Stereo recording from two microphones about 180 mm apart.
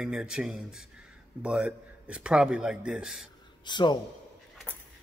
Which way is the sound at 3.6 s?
25° left (ahead or behind).